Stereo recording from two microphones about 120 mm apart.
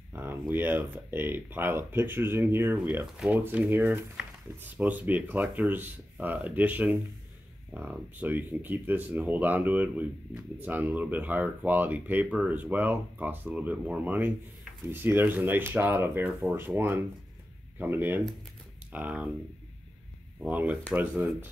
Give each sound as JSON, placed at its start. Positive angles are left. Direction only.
{"t": 0.1, "sound": "speech", "side_deg": -15}
{"t": 20.3, "sound": "speech", "side_deg": -15}